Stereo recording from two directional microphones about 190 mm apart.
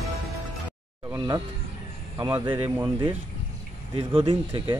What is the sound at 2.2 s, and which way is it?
Speech, 20° right (ahead or behind).